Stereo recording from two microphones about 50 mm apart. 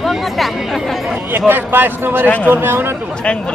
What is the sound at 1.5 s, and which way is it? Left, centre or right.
Speech, right.